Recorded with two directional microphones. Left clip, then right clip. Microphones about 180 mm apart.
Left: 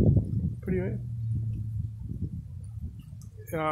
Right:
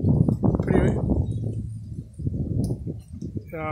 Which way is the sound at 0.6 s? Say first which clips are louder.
Right 8 dB; 15° right (ahead or behind).